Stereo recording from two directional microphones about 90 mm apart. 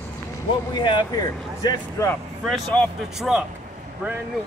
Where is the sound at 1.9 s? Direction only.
30° left (ahead or behind).